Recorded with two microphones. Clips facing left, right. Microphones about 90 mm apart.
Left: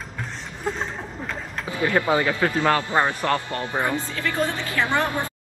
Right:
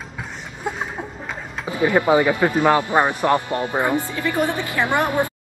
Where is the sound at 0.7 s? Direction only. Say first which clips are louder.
Right 1 dB; 10° right (ahead or behind).